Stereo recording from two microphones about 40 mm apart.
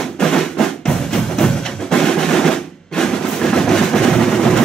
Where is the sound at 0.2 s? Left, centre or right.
Centre.